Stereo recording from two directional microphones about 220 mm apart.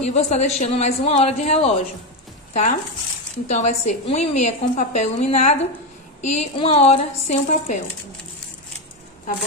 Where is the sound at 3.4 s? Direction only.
30° left (ahead or behind).